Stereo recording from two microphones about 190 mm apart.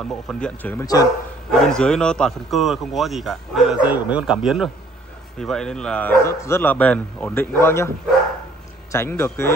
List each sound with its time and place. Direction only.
0.1 s a man's voice: 5° left (ahead or behind)
8.9 s speech: 15° left (ahead or behind)